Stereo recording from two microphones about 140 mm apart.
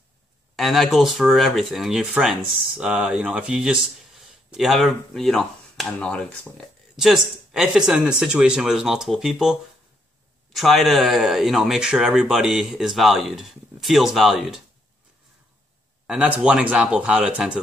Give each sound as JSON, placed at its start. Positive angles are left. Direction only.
{"t": 0.6, "sound": "speech", "side_deg": 0}
{"t": 7.1, "sound": "speech", "side_deg": -5}
{"t": 16.1, "sound": "speech", "side_deg": -10}